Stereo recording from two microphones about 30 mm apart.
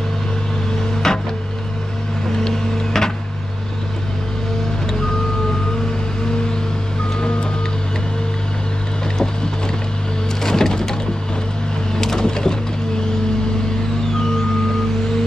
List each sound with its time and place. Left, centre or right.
1.0 s music: centre
2.4 s power windows: centre
7.2 s music: left
10.4 s music: centre